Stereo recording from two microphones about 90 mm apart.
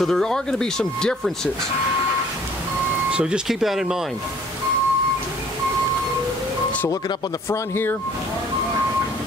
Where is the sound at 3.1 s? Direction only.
10° right (ahead or behind).